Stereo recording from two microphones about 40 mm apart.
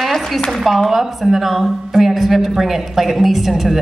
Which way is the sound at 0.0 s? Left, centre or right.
Centre.